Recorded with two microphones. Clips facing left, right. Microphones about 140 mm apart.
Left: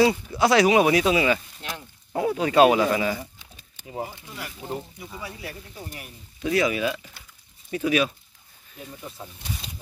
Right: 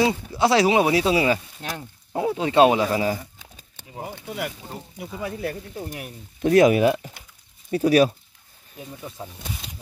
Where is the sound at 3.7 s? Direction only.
65° right (ahead or behind).